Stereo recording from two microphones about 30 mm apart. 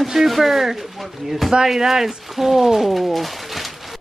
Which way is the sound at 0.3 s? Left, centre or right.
Centre.